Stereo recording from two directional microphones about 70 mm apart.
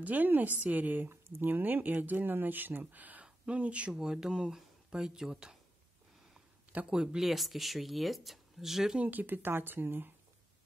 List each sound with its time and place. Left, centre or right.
0.0 s speech: right
6.9 s speech: centre
9.0 s speech: right